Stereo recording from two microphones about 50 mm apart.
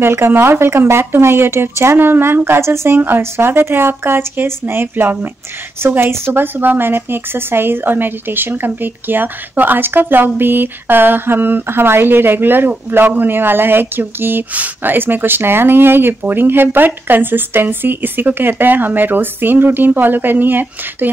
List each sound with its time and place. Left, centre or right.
0.0 s speech: right
2.6 s speech: right
3.2 s speech: right